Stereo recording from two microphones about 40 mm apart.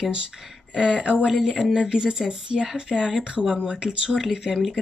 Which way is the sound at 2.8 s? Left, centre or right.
Right.